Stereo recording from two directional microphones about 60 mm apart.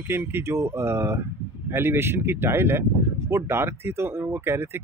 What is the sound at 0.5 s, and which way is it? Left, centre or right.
Speech, right.